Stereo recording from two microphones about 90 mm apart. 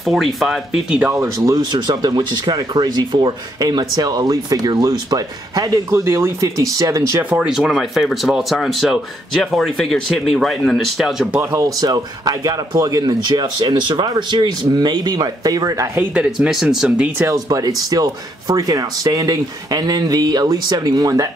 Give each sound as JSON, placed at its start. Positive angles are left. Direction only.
{"t": 0.0, "sound": "speech", "side_deg": 0}
{"t": 1.1, "sound": "speech", "side_deg": -35}
{"t": 1.6, "sound": "speech", "side_deg": -55}
{"t": 5.9, "sound": "speech", "side_deg": -30}
{"t": 7.2, "sound": "speech", "side_deg": -10}
{"t": 11.5, "sound": "speech", "side_deg": -40}
{"t": 16.3, "sound": "speech", "side_deg": -5}
{"t": 17.3, "sound": "speech", "side_deg": -40}